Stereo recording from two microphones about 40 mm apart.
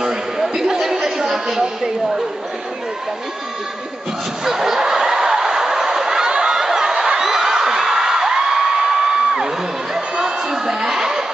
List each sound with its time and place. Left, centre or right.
0.0 s chatter: centre
4.5 s snicker: centre
9.9 s a sound: centre